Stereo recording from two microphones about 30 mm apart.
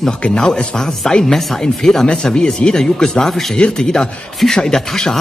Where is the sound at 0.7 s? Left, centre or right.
Centre.